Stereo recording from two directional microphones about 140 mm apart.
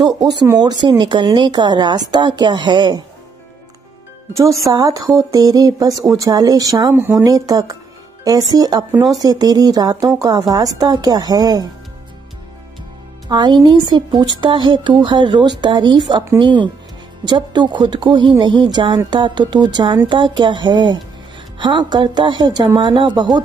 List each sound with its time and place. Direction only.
0.0 s speech: 30° right (ahead or behind)
4.3 s speech: 20° right (ahead or behind)
13.3 s speech: 35° right (ahead or behind)